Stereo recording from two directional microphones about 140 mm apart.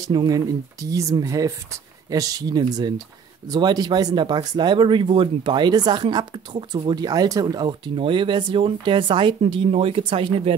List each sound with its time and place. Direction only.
0.0 s speech: 30° right (ahead or behind)